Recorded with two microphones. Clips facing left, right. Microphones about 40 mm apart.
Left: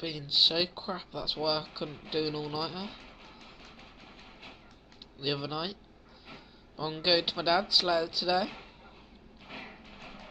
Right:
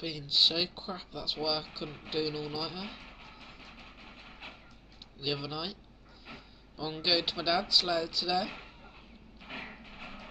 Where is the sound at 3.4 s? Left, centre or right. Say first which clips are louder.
Right 1 dB; right.